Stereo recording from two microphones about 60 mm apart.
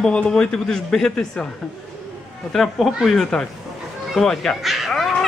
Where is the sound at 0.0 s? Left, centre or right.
Centre.